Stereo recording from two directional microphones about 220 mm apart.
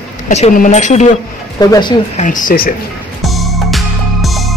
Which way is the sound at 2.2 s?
35° left (ahead or behind).